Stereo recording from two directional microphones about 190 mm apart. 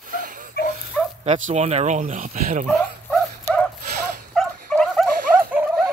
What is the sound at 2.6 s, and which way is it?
Dog, centre (ahead or behind).